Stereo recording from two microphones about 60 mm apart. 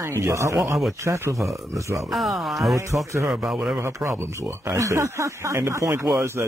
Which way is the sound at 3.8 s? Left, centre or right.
Right.